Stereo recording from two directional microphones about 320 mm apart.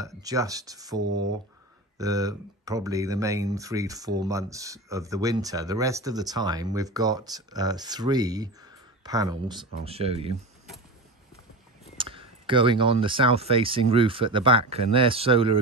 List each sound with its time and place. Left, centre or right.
0.0 s speech: centre
12.0 s speech: centre